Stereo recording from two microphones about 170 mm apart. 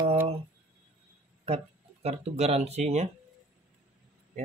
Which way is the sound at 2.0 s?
40° right (ahead or behind).